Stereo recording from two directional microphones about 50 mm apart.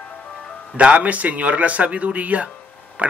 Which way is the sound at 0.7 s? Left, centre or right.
Right.